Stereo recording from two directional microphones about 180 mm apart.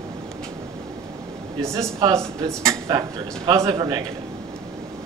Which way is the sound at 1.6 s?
15° right (ahead or behind).